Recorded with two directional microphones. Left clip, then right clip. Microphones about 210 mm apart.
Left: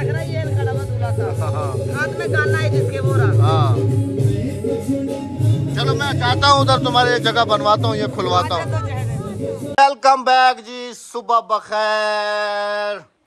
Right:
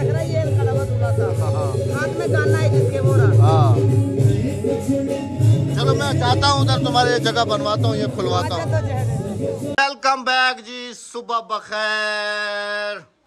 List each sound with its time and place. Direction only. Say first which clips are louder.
0.0 s music: right 2 dB; 35° right (ahead or behind)
3.1 s music: right 1 dB; 40° right (ahead or behind)
3.3 s music: right 1 dB; 15° right (ahead or behind)
5.8 s music: left 1 dB; 20° right (ahead or behind)
6.5 s a man's voice: left 5 dB; 5° right (ahead or behind)
9.8 s music: left 6 dB; centre (ahead or behind)
11.2 s speech: left 6 dB; centre (ahead or behind)